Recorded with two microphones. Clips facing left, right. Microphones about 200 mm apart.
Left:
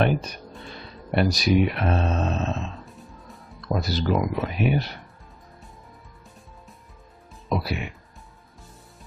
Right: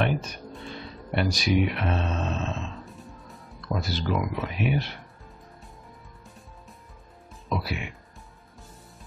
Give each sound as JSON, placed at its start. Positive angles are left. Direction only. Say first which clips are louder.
{"t": 0.0, "sound": "speech", "louder": "left 4 dB", "side_deg": 35}
{"t": 2.8, "sound": "music", "louder": "even", "side_deg": 0}
{"t": 3.6, "sound": "speech", "louder": "left 4 dB", "side_deg": 40}
{"t": 7.5, "sound": "speech", "louder": "left 4 dB", "side_deg": 40}